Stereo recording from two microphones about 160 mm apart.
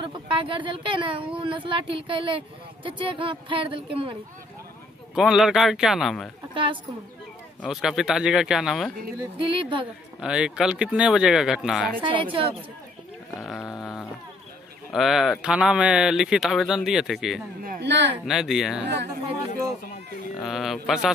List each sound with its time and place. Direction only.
0.0 s speech: 35° right (ahead or behind)
5.1 s speech: centre (ahead or behind)
6.5 s a woman's voice: 35° right (ahead or behind)
7.6 s speech: centre (ahead or behind)
9.4 s speech: 30° right (ahead or behind)
10.2 s speech: 5° right (ahead or behind)
12.0 s speech: 30° right (ahead or behind)
13.4 s a sound: centre (ahead or behind)
14.9 s speech: centre (ahead or behind)
17.6 s a sound: 90° right
18.2 s speech: 5° right (ahead or behind)
20.3 s a sound: centre (ahead or behind)